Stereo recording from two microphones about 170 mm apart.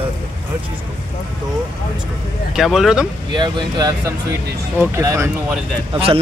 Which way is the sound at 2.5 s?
Centre (ahead or behind).